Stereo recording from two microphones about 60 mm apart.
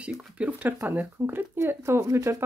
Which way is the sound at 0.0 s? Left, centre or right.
Right.